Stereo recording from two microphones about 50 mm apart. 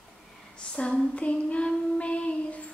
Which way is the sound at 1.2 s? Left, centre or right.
Left.